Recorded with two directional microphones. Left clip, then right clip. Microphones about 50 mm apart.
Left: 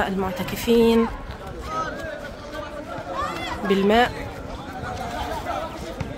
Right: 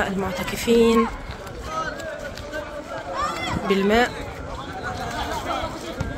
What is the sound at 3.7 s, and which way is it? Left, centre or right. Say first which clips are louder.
Speech: left 1 dB; left.